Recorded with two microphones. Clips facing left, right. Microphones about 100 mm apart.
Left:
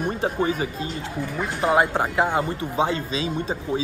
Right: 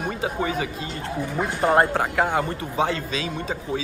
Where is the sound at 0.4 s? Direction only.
35° left (ahead or behind).